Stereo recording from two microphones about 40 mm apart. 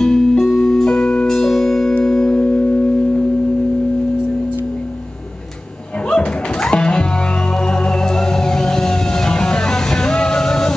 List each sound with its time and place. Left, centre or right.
0.0 s music: centre
6.0 s music: left